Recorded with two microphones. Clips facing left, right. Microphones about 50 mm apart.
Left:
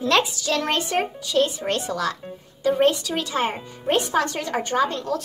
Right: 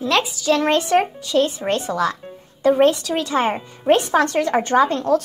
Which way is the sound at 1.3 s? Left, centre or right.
Right.